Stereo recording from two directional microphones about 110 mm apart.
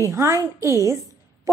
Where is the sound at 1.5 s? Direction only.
30° right (ahead or behind).